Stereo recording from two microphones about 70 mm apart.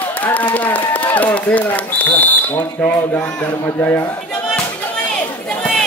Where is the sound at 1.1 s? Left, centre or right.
Left.